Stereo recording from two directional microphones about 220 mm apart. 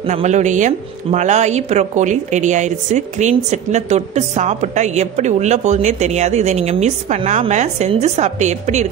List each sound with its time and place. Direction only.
0.0 s speech: 30° right (ahead or behind)